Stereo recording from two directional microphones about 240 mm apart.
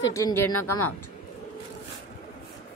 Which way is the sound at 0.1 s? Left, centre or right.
Centre.